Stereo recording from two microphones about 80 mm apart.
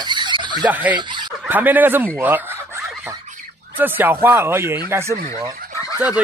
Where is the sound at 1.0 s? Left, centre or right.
Right.